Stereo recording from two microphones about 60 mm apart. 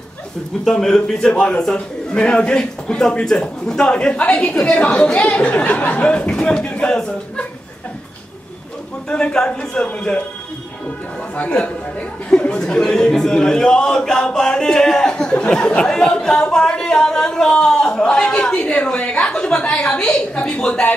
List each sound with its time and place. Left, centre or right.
0.7 s a man's voice: centre
9.1 s a man's voice: centre
11.3 s a man's voice: left